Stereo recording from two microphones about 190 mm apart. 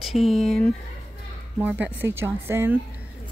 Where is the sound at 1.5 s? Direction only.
10° right (ahead or behind).